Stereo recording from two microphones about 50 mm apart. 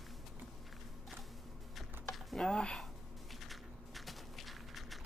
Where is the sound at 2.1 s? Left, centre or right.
Centre.